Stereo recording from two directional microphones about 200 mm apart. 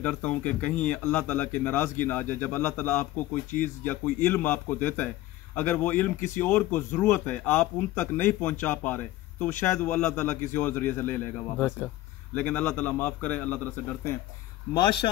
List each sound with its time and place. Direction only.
0.0 s speech: 5° left (ahead or behind)
14.7 s speech: 20° left (ahead or behind)